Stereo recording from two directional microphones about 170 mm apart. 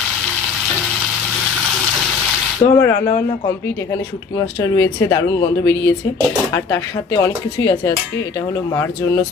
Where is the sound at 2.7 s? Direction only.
10° left (ahead or behind).